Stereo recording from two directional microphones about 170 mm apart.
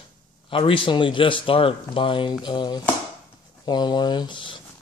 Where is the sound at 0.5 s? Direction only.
30° left (ahead or behind).